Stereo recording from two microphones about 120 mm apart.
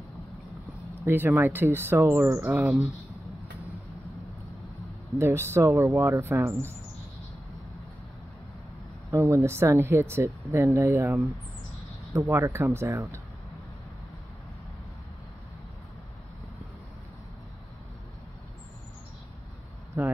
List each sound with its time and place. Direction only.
1.0 s speech: 20° right (ahead or behind)
5.2 s speech: 20° right (ahead or behind)
9.1 s speech: 25° right (ahead or behind)
19.9 s speech: 20° right (ahead or behind)